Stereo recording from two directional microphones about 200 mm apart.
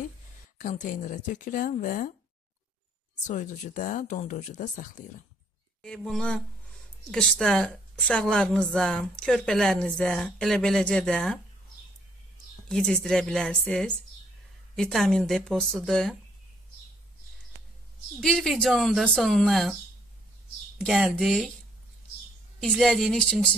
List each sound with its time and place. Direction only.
0.6 s speech: 40° left (ahead or behind)
3.3 s speech: 40° left (ahead or behind)
5.8 s a woman's voice: 5° left (ahead or behind)
12.6 s a woman's voice: 5° left (ahead or behind)
18.2 s a woman's voice: centre (ahead or behind)
20.7 s a woman's voice: centre (ahead or behind)
22.6 s a woman's voice: centre (ahead or behind)